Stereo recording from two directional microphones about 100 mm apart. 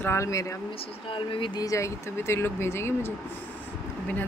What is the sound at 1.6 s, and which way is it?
A woman's voice, 30° left (ahead or behind).